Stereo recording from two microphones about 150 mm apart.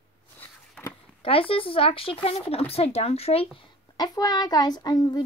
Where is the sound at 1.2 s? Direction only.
40° left (ahead or behind).